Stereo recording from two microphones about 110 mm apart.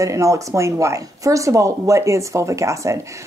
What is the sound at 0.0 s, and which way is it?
Speech, 25° right (ahead or behind).